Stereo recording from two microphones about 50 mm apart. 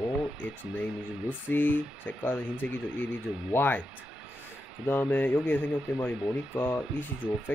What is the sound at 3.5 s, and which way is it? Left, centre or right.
Speech, left.